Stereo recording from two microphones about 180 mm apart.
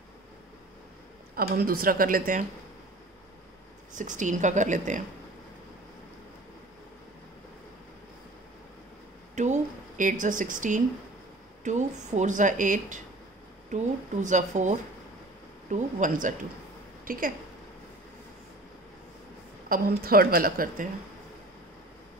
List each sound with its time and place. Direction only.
1.3 s a woman's voice: 55° right (ahead or behind)
3.9 s a woman's voice: 45° right (ahead or behind)
9.3 s a woman's voice: 40° right (ahead or behind)
19.7 s a woman's voice: 55° right (ahead or behind)